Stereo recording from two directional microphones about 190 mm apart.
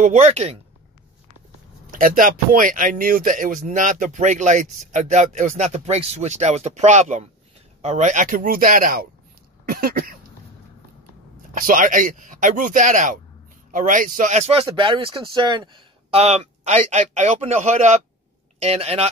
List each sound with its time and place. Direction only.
0.0 s speech: 35° right (ahead or behind)
1.9 s speech: 45° right (ahead or behind)
11.5 s speech: 45° right (ahead or behind)